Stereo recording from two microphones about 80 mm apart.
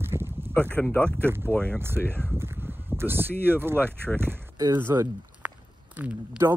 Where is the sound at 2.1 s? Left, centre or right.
Right.